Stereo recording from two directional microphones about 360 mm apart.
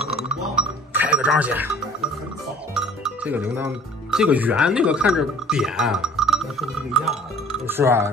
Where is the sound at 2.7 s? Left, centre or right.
Centre.